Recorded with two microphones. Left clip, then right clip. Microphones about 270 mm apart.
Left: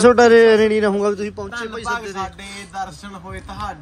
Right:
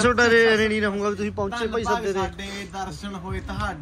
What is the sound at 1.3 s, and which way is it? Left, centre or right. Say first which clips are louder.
A man's voice: right 2 dB; centre.